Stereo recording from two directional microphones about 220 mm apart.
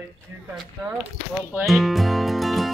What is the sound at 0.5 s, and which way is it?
Speech, 10° right (ahead or behind).